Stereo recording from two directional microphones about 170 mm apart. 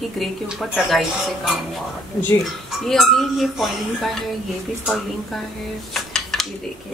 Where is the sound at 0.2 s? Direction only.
Centre (ahead or behind).